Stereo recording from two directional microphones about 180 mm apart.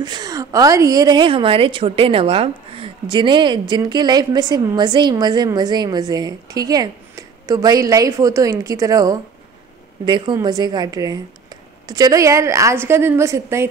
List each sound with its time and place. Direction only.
0.0 s a woman's voice: 20° right (ahead or behind)